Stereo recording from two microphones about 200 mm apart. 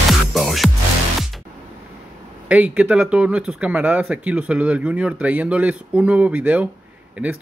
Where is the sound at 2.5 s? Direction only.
5° right (ahead or behind).